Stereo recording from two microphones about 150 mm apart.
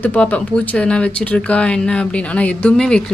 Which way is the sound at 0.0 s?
10° left (ahead or behind).